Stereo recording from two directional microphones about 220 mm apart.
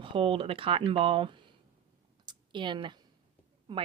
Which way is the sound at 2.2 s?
20° right (ahead or behind).